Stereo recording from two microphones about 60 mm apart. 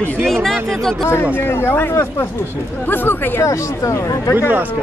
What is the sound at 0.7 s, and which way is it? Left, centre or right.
Speech, centre.